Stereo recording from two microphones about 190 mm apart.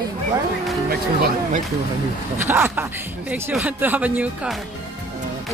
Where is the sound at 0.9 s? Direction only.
50° right (ahead or behind).